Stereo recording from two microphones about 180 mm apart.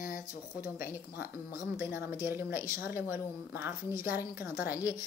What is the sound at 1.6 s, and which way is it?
A woman's voice, 10° right (ahead or behind).